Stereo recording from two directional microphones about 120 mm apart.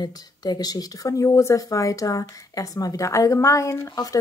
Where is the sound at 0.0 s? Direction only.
35° left (ahead or behind).